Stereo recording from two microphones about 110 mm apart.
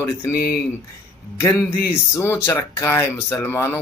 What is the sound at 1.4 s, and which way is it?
Speech, 30° left (ahead or behind).